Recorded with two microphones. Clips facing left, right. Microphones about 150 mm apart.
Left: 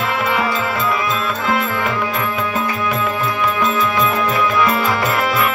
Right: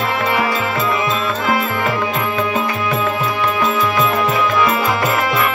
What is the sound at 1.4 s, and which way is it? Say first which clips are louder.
Music: even; 10° right (ahead or behind).